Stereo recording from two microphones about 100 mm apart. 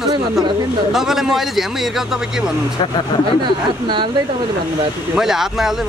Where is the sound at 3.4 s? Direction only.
50° right (ahead or behind).